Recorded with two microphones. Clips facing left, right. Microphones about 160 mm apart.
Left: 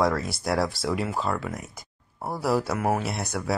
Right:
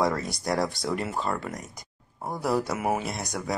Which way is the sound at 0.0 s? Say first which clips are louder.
Left 2 dB; centre (ahead or behind).